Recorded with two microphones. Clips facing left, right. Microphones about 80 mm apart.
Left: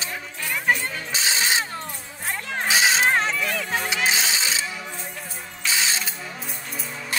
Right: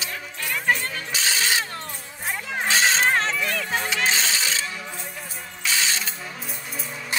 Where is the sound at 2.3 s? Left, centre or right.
Centre.